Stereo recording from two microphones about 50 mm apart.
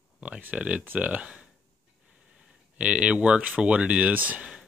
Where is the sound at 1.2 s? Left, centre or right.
Right.